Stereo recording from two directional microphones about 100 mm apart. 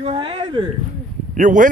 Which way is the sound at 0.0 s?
60° right (ahead or behind).